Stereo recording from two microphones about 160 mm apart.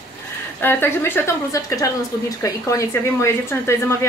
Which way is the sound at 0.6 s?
15° left (ahead or behind).